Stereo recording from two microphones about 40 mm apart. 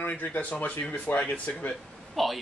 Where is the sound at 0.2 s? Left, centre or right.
Left.